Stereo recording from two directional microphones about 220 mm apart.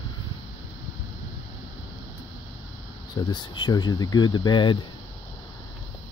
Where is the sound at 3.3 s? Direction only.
20° left (ahead or behind).